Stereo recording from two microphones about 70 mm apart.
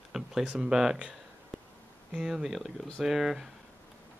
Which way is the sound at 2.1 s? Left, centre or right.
Centre.